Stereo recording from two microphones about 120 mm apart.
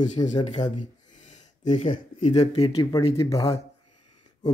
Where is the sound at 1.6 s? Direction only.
90° left.